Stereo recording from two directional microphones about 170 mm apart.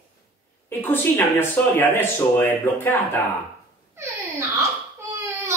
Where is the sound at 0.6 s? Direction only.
10° left (ahead or behind).